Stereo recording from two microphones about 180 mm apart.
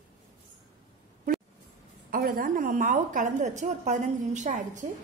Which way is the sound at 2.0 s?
55° right (ahead or behind).